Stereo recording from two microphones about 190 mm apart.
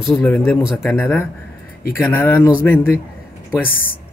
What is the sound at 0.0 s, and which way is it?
Speech, 5° left (ahead or behind).